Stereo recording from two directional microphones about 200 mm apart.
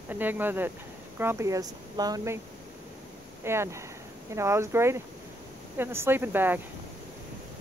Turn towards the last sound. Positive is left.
turn(degrees=-10)  # may be behind; listen again after turning